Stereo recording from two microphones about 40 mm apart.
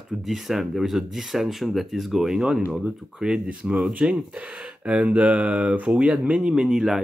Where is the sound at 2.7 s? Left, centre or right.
Centre.